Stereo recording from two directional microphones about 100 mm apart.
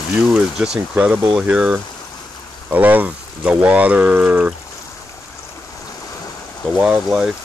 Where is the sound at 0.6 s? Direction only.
10° right (ahead or behind).